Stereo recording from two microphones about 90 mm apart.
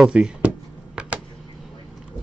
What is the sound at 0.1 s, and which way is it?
Speech, 15° right (ahead or behind).